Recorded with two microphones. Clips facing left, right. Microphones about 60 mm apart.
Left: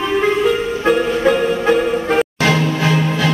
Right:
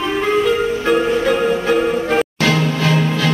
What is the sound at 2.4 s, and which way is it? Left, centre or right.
Music, left.